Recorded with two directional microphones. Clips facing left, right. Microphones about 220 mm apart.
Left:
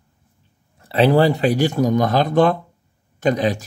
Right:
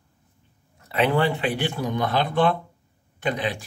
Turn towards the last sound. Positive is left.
turn(degrees=40)  # may be behind; listen again after turning